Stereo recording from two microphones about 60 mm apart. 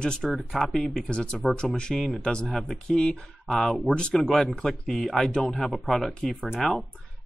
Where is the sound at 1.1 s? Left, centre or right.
Centre.